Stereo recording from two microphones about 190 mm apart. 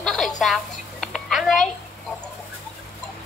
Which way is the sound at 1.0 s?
Centre (ahead or behind).